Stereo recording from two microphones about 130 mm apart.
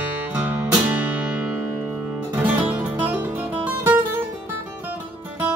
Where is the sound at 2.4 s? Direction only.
15° right (ahead or behind).